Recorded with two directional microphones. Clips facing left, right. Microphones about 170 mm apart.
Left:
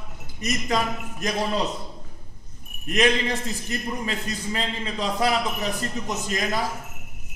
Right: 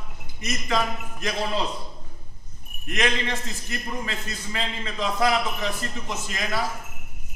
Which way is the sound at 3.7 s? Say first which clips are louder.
Left 2 dB; 35° left (ahead or behind).